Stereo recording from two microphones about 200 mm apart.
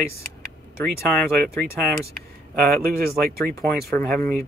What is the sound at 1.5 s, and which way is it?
Speech, 5° left (ahead or behind).